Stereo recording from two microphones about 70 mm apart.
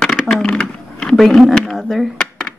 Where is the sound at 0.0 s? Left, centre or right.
Centre.